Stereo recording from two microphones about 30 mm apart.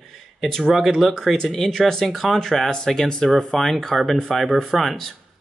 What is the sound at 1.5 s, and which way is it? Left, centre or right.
Speech, centre.